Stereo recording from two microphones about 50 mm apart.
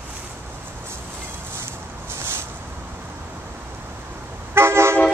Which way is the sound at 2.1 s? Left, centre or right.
Right.